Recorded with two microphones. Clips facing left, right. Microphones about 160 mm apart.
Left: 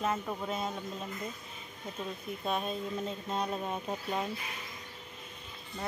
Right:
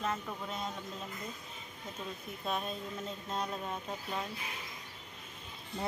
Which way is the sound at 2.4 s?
Centre (ahead or behind).